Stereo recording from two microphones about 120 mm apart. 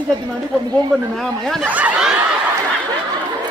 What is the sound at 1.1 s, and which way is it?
Speech, 5° left (ahead or behind).